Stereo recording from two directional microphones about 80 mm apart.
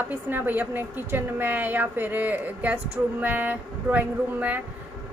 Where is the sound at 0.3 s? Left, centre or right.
Right.